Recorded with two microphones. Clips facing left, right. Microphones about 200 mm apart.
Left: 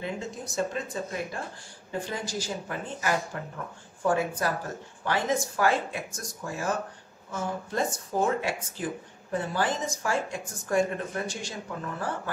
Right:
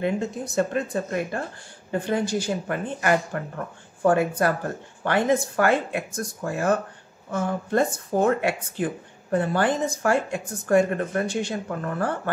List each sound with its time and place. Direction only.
0.0 s speech: 60° right (ahead or behind)